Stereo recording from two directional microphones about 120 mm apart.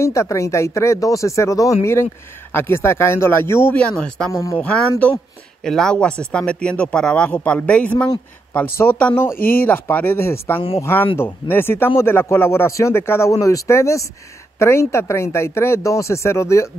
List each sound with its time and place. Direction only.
0.0 s a man's voice: 25° left (ahead or behind)
4.6 s a man's voice: 10° left (ahead or behind)